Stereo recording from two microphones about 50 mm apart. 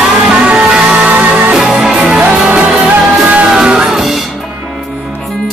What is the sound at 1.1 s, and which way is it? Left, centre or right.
Music, right.